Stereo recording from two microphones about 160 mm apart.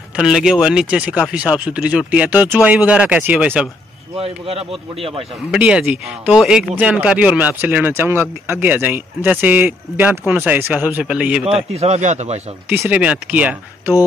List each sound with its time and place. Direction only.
0.1 s speech: 5° right (ahead or behind)
4.2 s a man's voice: 40° right (ahead or behind)
5.5 s speech: 5° right (ahead or behind)
11.7 s a man's voice: 40° right (ahead or behind)
12.6 s speech: 10° right (ahead or behind)